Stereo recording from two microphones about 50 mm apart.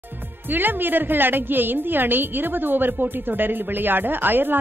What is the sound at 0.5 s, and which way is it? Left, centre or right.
A woman's voice, right.